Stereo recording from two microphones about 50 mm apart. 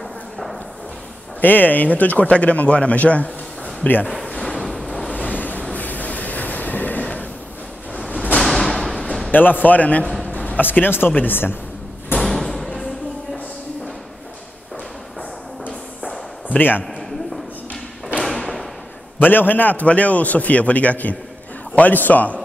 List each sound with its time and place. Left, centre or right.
1.4 s speech: left
4.3 s a sound: centre
4.6 s waves: centre
5.1 s train: left
7.9 s a sound: left
8.4 s thump: centre
9.3 s a man's voice: left
10.2 s a sound: left
10.6 s a man's voice: left
12.2 s thump: centre
16.4 s a man's voice: left
18.2 s thump: centre
19.1 s a man's voice: left